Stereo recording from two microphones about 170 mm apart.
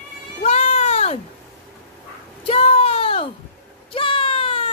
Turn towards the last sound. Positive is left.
turn(degrees=35)  # may be behind; listen again after turning